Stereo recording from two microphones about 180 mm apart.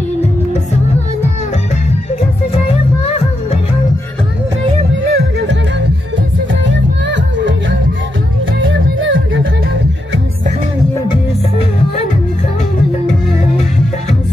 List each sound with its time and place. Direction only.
5.0 s music: 75° right (ahead or behind)
8.5 s music: 90° right